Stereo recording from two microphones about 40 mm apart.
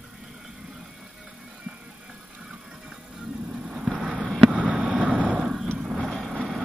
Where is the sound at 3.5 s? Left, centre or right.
Centre.